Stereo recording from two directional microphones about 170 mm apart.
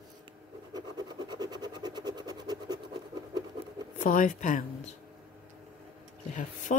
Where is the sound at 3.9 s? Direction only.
50° left (ahead or behind).